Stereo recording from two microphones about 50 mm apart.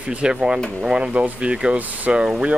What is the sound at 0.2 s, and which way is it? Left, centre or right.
Speech, centre.